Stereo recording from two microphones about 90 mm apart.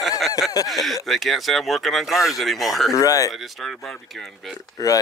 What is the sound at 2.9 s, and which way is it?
Speech, 40° left (ahead or behind).